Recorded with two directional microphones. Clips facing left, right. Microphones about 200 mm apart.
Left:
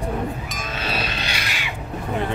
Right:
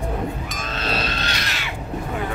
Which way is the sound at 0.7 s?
10° left (ahead or behind).